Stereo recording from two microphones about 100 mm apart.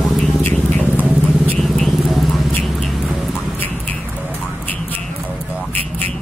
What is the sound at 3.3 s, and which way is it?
Music, 15° left (ahead or behind).